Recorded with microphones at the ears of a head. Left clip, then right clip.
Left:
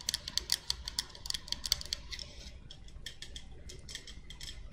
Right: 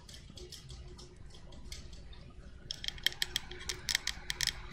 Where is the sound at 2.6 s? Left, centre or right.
Right.